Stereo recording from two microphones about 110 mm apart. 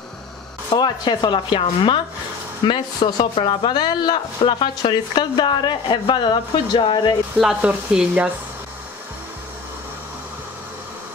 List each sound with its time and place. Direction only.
0.7 s speech: 40° left (ahead or behind)
7.3 s speech: 5° right (ahead or behind)